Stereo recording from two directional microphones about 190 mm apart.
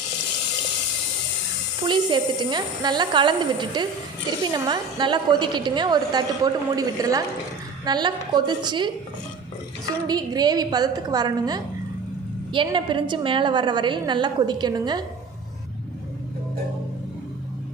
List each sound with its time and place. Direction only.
1.9 s a woman's voice: 25° right (ahead or behind)
10.0 s a woman's voice: 20° right (ahead or behind)